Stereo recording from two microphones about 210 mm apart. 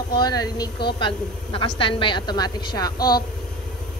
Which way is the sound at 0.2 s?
20° left (ahead or behind).